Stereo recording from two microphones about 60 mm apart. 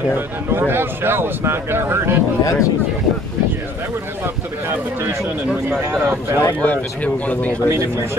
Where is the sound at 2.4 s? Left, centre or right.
Left.